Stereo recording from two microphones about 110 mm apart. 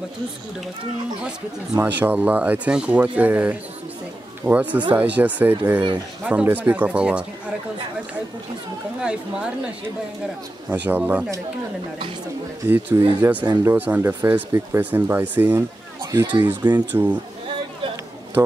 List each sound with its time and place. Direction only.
1.8 s speech: 15° right (ahead or behind)
9.0 s speech: 10° right (ahead or behind)
10.7 s speech: 15° right (ahead or behind)
12.6 s speech: 20° right (ahead or behind)
16.0 s a sound: 30° right (ahead or behind)
16.3 s speech: 45° right (ahead or behind)
16.7 s speech: 15° right (ahead or behind)